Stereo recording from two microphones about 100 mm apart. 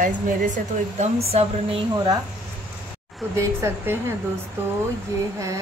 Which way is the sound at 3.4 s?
25° right (ahead or behind).